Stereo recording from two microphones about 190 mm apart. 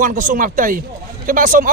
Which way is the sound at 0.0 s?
45° right (ahead or behind).